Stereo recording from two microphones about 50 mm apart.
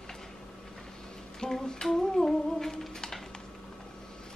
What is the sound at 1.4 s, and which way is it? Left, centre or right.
Humming, centre.